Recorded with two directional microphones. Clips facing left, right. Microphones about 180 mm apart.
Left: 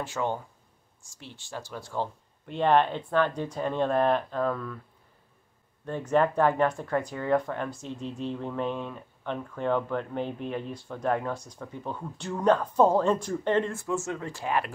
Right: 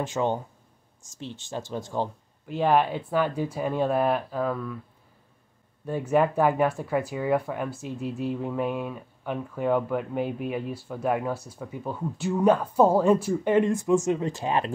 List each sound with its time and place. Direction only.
0.0 s speech: 20° right (ahead or behind)
2.4 s speech: 5° right (ahead or behind)
5.9 s speech: 10° right (ahead or behind)